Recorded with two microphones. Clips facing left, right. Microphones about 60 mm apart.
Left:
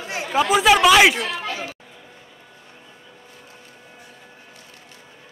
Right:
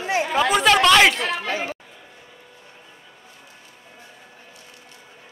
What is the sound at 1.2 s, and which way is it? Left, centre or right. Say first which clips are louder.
Chatter: right 3 dB; right.